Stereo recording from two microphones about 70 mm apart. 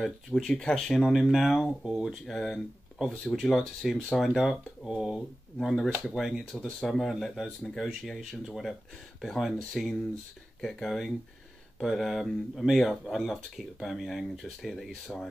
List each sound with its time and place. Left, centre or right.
0.0 s speech: centre
0.8 s speech: centre
6.4 s speech: centre